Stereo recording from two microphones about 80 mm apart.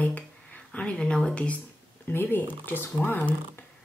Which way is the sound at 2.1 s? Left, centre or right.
Left.